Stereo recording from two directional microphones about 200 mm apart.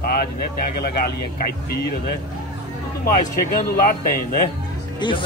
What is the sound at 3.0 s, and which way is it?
Speech, 45° left (ahead or behind).